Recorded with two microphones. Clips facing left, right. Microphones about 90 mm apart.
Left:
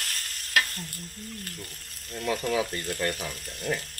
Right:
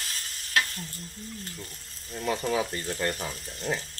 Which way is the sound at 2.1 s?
5° right (ahead or behind).